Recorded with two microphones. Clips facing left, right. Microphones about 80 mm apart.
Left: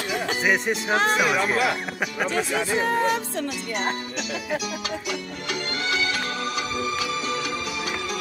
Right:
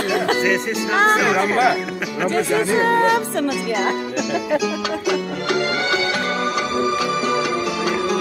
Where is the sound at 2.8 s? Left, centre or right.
Right.